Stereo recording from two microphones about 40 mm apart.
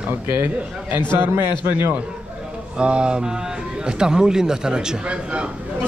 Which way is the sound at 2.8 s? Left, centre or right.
Right.